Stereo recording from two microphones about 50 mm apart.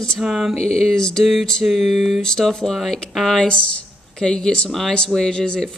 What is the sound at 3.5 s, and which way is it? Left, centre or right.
Speech, centre.